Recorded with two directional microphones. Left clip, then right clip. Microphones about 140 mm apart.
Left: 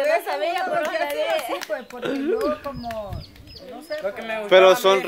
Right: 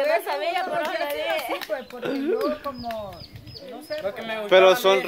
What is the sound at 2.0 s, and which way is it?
Speech, 10° left (ahead or behind).